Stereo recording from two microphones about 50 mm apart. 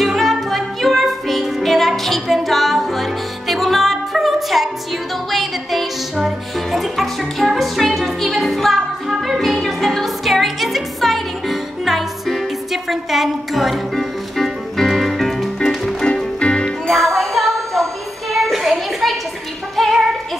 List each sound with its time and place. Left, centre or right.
0.0 s music: centre
9.1 s music: centre
9.4 s music: centre
16.3 s music: left
16.9 s music: centre
18.3 s a sound: centre
19.7 s music: centre